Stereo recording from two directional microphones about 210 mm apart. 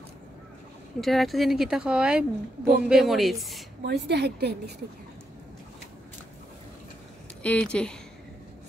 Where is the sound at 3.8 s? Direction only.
55° right (ahead or behind).